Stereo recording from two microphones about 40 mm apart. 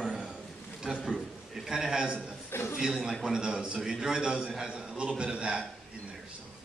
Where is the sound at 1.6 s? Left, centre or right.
Centre.